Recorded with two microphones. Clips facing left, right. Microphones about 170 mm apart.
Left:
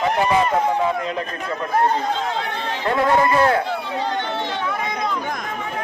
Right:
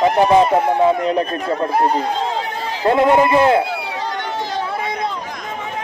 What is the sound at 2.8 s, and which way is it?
Speech, 30° right (ahead or behind).